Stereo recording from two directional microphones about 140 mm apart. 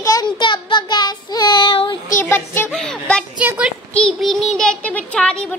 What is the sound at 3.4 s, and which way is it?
Child singing, 10° right (ahead or behind).